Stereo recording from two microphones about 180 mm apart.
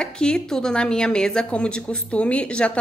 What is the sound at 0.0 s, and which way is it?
A woman's voice, 5° left (ahead or behind).